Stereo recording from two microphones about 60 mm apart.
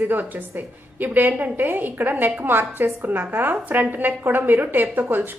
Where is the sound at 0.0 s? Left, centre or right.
Right.